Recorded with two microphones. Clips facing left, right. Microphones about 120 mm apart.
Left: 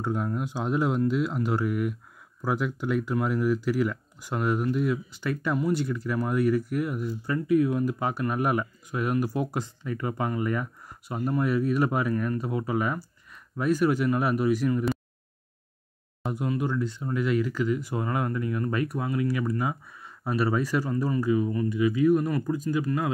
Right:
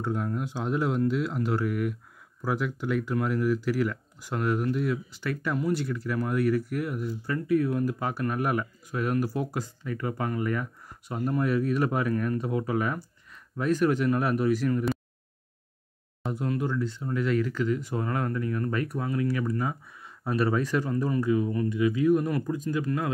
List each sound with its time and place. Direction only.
0.0 s speech: 15° left (ahead or behind)
16.3 s speech: 10° left (ahead or behind)